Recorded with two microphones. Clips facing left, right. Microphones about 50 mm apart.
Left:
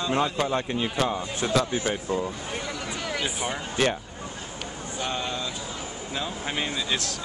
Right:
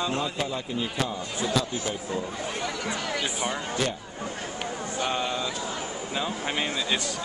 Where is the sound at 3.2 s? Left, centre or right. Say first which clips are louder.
Even; centre.